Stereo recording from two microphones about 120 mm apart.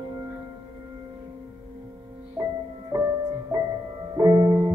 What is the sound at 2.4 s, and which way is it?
Music, 35° right (ahead or behind).